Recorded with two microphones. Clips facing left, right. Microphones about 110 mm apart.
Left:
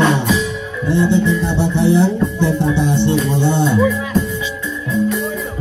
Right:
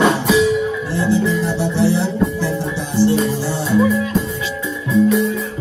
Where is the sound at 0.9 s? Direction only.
25° left (ahead or behind).